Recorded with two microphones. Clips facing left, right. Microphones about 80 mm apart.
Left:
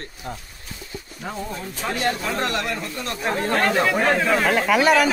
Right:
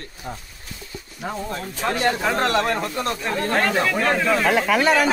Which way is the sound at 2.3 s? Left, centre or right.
Right.